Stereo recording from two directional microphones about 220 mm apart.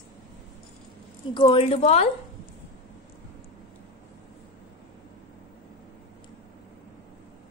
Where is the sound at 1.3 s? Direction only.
20° left (ahead or behind).